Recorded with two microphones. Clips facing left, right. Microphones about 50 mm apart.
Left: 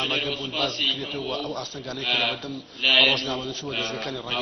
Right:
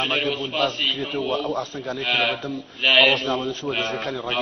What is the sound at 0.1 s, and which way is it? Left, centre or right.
Speech, right.